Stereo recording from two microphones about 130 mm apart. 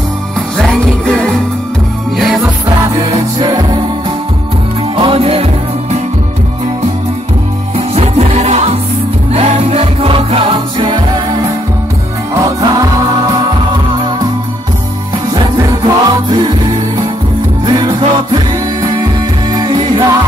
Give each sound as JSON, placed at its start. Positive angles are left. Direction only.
{"t": 0.6, "sound": "music", "side_deg": 5}
{"t": 3.0, "sound": "music", "side_deg": -35}
{"t": 4.9, "sound": "music", "side_deg": -45}
{"t": 7.7, "sound": "music", "side_deg": -55}
{"t": 12.4, "sound": "music", "side_deg": -30}
{"t": 15.3, "sound": "music", "side_deg": -35}
{"t": 17.6, "sound": "music", "side_deg": -35}